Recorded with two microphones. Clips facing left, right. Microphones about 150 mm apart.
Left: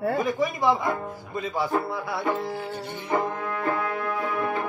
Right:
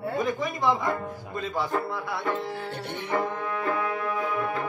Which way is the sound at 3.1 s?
10° left (ahead or behind).